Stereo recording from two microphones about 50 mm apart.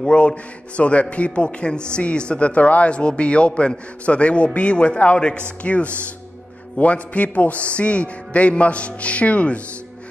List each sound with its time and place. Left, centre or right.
0.0 s speech: centre